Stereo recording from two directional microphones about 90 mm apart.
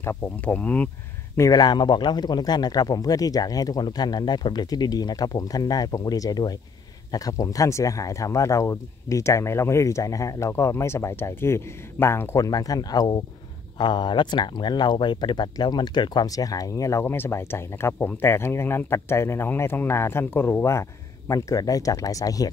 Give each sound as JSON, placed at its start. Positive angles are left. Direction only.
{"t": 0.0, "sound": "speech", "side_deg": 20}
{"t": 1.5, "sound": "speech", "side_deg": 50}
{"t": 12.4, "sound": "speech", "side_deg": 45}
{"t": 13.7, "sound": "speech", "side_deg": 60}
{"t": 17.0, "sound": "speech", "side_deg": 25}